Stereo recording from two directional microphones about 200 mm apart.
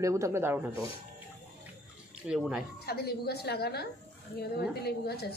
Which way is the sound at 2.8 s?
50° left (ahead or behind).